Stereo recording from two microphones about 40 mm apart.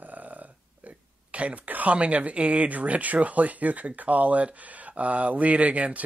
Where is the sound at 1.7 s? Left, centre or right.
Right.